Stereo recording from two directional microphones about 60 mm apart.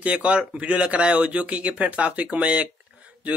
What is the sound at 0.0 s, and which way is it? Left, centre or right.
Speech, right.